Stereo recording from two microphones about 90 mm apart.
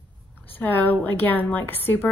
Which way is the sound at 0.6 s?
20° left (ahead or behind).